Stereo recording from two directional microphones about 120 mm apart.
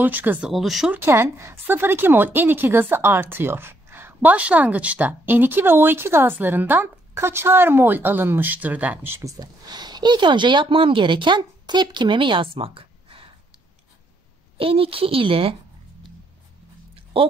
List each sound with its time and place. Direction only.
0.0 s a woman's voice: 15° right (ahead or behind)
0.5 s speech: centre (ahead or behind)
0.9 s a woman's voice: 20° right (ahead or behind)
9.4 s speech: 35° right (ahead or behind)
14.6 s a woman's voice: 50° right (ahead or behind)
16.9 s a sound: 50° right (ahead or behind)